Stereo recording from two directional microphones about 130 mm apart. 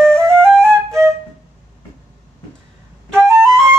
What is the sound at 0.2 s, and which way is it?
Flute, 20° right (ahead or behind).